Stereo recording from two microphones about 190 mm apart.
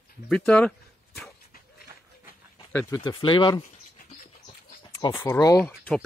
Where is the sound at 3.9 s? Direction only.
45° left (ahead or behind).